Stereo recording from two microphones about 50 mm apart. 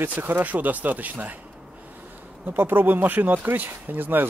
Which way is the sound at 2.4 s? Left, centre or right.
Right.